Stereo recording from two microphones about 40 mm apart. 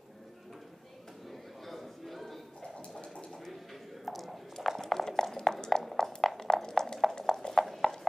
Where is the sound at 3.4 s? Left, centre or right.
Centre.